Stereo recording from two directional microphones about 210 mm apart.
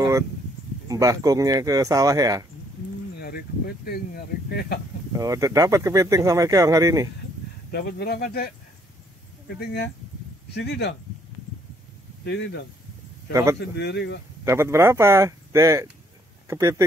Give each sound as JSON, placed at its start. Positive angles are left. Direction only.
{"t": 0.8, "sound": "speech", "side_deg": -15}
{"t": 3.2, "sound": "speech", "side_deg": 45}
{"t": 5.1, "sound": "speech", "side_deg": -15}
{"t": 7.7, "sound": "speech", "side_deg": 50}
{"t": 9.6, "sound": "speech", "side_deg": 50}
{"t": 13.3, "sound": "speech", "side_deg": -15}
{"t": 13.6, "sound": "speech", "side_deg": 55}
{"t": 14.4, "sound": "speech", "side_deg": -15}